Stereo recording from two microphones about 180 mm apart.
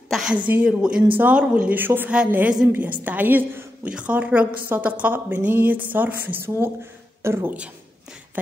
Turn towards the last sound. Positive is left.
turn(degrees=-10)  # may be behind; listen again after turning